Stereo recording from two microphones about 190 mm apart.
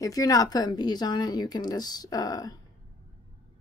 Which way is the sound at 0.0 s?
20° left (ahead or behind).